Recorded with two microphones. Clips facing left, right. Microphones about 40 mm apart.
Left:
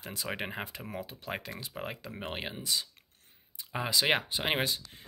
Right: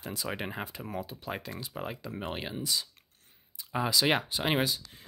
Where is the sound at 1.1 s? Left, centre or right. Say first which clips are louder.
Right 1 dB; left.